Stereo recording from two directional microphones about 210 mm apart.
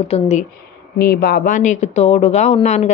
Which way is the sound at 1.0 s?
45° left (ahead or behind).